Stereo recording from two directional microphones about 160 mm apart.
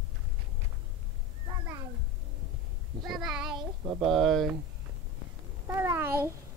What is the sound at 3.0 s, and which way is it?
Child singing, centre (ahead or behind).